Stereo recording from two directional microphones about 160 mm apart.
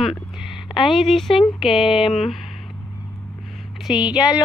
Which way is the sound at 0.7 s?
30° left (ahead or behind).